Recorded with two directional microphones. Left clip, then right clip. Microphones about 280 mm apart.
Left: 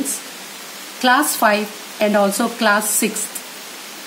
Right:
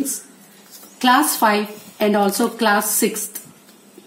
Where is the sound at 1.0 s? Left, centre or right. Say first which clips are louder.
Even; centre.